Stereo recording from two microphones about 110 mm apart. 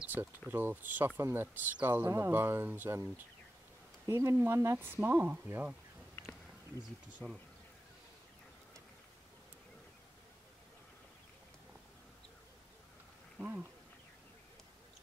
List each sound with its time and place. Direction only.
0.0 s speech: 15° right (ahead or behind)
4.1 s speech: 25° right (ahead or behind)
13.4 s speech: 10° right (ahead or behind)